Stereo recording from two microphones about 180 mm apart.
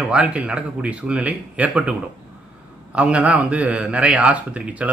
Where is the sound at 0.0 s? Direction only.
5° right (ahead or behind).